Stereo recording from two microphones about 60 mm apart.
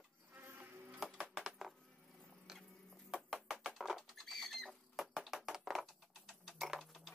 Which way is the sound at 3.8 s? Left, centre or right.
Centre.